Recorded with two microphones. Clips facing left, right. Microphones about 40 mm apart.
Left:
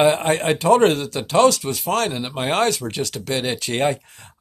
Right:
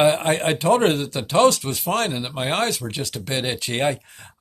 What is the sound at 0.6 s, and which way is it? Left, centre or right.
Speech, right.